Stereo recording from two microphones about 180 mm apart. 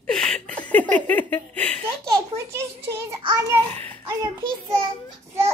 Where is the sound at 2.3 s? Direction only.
15° right (ahead or behind).